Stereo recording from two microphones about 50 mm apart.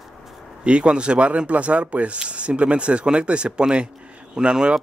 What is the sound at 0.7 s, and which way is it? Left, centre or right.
Speech, right.